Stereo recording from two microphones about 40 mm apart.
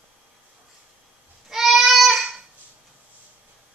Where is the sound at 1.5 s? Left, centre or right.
Centre.